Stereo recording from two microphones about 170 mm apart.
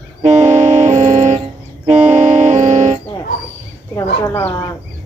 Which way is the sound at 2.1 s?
45° right (ahead or behind).